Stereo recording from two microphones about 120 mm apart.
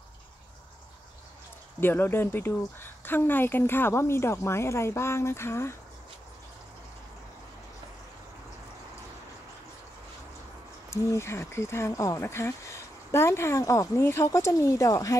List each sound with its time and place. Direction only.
1.8 s speech: 20° left (ahead or behind)
10.9 s speech: 20° left (ahead or behind)